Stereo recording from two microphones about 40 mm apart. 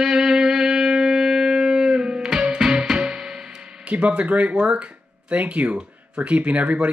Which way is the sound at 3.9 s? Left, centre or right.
Right.